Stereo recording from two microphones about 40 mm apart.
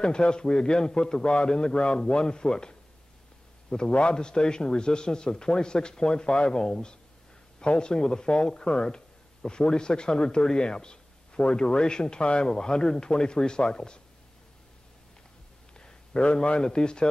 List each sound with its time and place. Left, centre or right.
0.0 s speech: left
3.9 s speech: left
15.8 s speech: left